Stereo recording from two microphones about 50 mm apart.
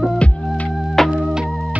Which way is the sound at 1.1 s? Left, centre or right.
Centre.